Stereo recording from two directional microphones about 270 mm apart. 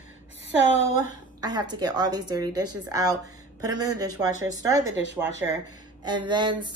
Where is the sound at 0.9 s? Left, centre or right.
Centre.